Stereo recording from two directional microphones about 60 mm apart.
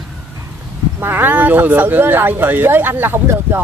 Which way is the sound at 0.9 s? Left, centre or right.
Right.